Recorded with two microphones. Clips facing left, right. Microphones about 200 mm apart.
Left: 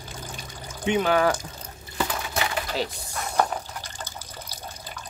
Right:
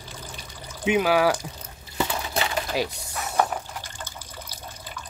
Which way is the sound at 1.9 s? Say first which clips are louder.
Right 1 dB; 25° right (ahead or behind).